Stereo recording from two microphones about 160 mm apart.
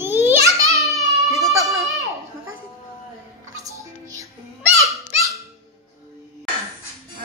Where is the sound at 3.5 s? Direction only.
20° right (ahead or behind).